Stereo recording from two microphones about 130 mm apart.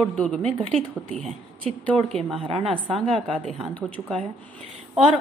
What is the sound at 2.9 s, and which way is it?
A woman's voice, centre (ahead or behind).